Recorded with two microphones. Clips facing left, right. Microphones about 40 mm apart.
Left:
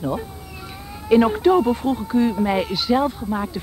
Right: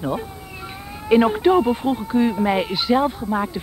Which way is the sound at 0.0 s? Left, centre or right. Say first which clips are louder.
Even; centre.